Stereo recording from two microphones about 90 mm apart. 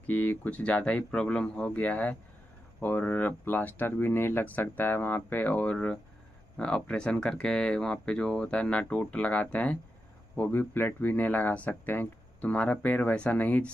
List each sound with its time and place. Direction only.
0.0 s speech: 20° left (ahead or behind)